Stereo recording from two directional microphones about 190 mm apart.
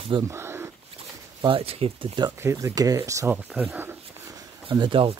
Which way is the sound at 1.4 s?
30° right (ahead or behind).